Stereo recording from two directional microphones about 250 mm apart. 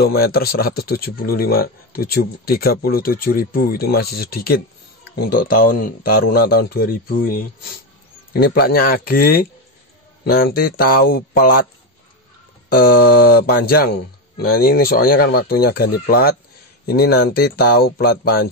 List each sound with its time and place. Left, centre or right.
0.0 s speech: left
12.7 s speech: left